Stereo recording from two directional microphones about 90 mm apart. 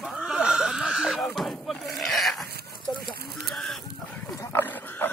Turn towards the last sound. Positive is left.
turn(degrees=25)  # may be behind; listen again after turning